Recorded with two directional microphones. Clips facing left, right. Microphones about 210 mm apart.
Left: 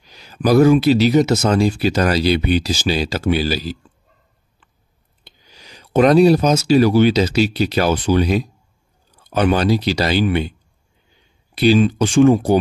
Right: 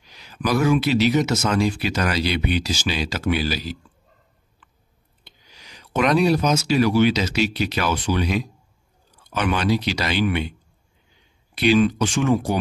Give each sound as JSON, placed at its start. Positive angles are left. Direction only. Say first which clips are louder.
{"t": 0.0, "sound": "speech", "louder": "left 6 dB", "side_deg": 35}
{"t": 4.6, "sound": "chewing", "louder": "right 1 dB", "side_deg": 30}
{"t": 5.2, "sound": "speech", "louder": "left 4 dB", "side_deg": 35}
{"t": 11.5, "sound": "speech", "louder": "left 4 dB", "side_deg": 35}